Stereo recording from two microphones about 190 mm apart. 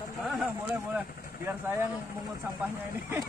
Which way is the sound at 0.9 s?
10° right (ahead or behind).